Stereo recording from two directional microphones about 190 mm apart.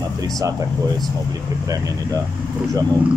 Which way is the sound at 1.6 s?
20° right (ahead or behind).